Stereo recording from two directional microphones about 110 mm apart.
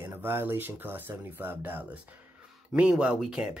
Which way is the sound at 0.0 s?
20° right (ahead or behind).